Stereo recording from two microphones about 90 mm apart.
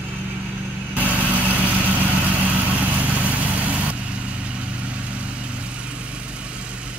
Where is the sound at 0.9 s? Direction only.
15° right (ahead or behind).